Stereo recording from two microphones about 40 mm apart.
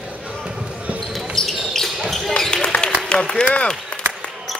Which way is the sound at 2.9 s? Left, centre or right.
Left.